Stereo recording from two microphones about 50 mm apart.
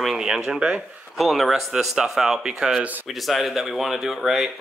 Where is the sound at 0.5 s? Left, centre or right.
Centre.